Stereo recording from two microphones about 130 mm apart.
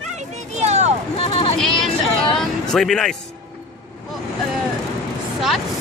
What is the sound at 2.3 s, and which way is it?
Speech, 5° left (ahead or behind).